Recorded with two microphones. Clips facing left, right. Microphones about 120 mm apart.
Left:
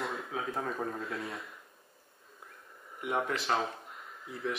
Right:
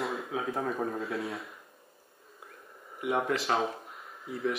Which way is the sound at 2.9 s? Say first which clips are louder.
Right 3 dB; 5° right (ahead or behind).